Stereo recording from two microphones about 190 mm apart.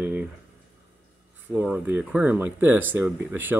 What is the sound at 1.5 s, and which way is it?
Speech, 10° right (ahead or behind).